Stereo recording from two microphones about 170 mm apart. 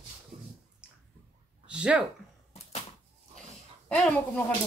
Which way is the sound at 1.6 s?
5° right (ahead or behind).